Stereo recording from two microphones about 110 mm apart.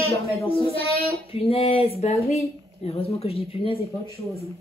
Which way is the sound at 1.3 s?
60° left (ahead or behind).